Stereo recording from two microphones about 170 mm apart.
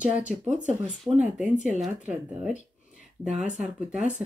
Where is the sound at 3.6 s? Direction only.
5° right (ahead or behind).